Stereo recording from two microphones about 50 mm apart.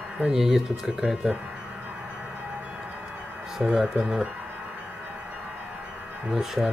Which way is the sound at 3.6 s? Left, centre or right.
Centre.